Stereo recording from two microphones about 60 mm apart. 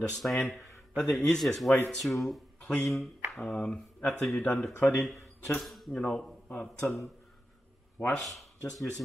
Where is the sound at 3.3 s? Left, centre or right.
Centre.